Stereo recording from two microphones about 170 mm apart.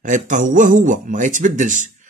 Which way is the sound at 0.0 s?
50° right (ahead or behind).